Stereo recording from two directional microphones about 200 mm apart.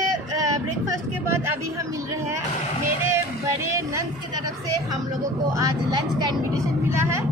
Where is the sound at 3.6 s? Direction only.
15° right (ahead or behind).